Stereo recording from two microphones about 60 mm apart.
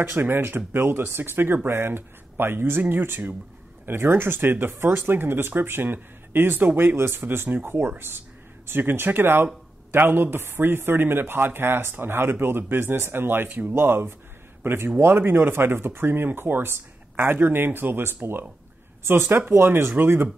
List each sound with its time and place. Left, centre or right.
0.0 s a man's voice: right